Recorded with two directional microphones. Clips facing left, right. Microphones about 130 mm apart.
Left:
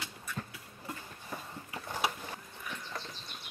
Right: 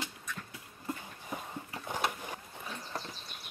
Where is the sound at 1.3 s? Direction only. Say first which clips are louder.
Right 2 dB; 20° right (ahead or behind).